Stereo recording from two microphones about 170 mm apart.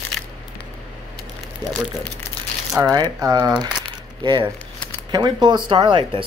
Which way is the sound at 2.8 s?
20° right (ahead or behind).